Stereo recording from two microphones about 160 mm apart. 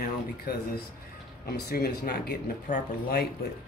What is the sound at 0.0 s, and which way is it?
Speech, 75° left (ahead or behind).